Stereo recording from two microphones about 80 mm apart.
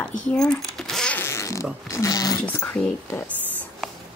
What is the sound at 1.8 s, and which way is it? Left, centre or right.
Speech, left.